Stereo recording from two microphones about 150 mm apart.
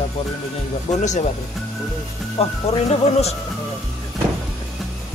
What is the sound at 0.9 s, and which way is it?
Music, 50° left (ahead or behind).